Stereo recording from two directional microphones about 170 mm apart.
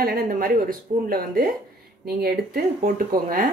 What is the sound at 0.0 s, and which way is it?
Speech, 60° right (ahead or behind).